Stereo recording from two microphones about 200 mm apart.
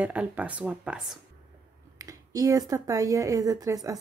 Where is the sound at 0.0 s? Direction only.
5° right (ahead or behind).